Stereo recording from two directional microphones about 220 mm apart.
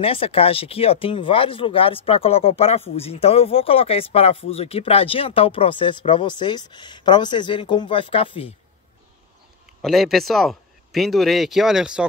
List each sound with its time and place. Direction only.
0.0 s speech: 25° left (ahead or behind)
9.8 s speech: centre (ahead or behind)